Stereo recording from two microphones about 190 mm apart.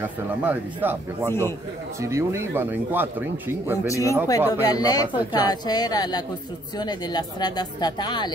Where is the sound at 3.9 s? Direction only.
15° left (ahead or behind).